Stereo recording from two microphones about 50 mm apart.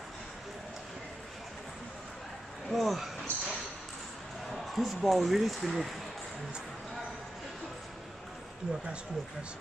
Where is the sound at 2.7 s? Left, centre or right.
Centre.